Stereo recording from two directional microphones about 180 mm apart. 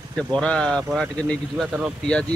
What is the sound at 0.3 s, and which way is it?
Speech, 5° left (ahead or behind).